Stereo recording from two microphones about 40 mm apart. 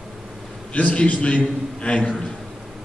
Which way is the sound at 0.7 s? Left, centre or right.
Left.